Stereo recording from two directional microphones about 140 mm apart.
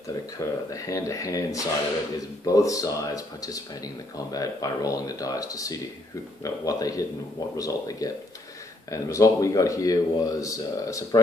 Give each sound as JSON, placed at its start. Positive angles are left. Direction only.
{"t": 0.4, "sound": "speech", "side_deg": 25}